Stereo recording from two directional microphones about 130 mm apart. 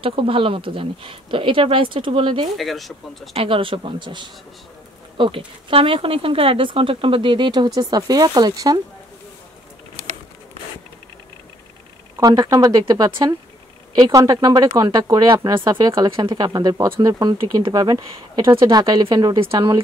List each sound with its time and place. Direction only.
0.0 s speech: 45° right (ahead or behind)
2.5 s speech: centre (ahead or behind)
3.3 s speech: 45° right (ahead or behind)
12.2 s speech: 30° right (ahead or behind)
19.4 s speech: 45° right (ahead or behind)